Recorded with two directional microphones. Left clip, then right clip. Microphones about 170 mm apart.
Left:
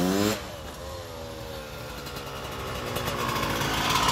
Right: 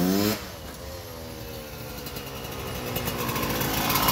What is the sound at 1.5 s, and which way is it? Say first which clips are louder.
Vehicle: left 1 dB; 10° right (ahead or behind).